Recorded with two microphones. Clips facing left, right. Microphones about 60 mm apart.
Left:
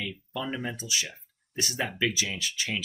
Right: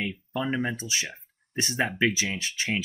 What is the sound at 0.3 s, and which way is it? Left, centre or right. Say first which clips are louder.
Speech: right 5 dB; right.